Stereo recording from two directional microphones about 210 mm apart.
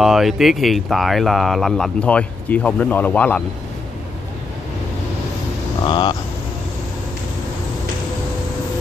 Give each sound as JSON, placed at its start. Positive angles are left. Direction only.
{"t": 0.0, "sound": "speech", "side_deg": 0}
{"t": 5.9, "sound": "speech", "side_deg": 25}